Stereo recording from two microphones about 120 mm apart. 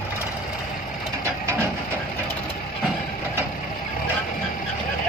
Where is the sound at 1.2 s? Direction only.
20° right (ahead or behind).